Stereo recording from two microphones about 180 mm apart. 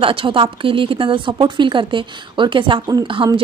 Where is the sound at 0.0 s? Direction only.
30° right (ahead or behind).